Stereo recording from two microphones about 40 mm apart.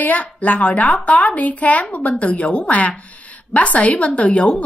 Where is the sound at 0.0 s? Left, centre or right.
Left.